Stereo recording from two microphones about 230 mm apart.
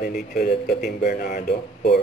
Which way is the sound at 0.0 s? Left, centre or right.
Left.